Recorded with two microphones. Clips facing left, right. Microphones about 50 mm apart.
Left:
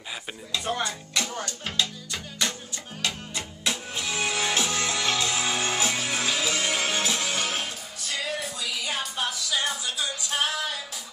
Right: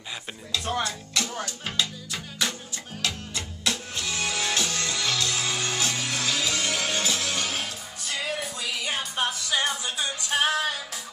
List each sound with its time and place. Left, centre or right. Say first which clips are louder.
0.5 s speech: right 1 dB; centre
1.3 s music: even; centre
3.0 s music: even; centre
8.5 s music: right 1 dB; right